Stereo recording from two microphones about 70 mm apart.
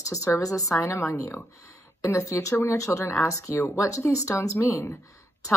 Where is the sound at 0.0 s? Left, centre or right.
Left.